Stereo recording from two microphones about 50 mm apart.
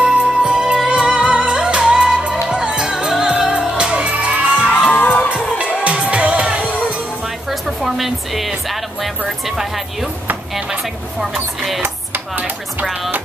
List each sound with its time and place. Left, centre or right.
0.0 s music: centre
4.9 s music: left
5.8 s music: right
7.8 s music: centre
10.5 s speech: centre